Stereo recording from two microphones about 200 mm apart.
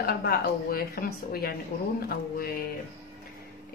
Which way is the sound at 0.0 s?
50° left (ahead or behind).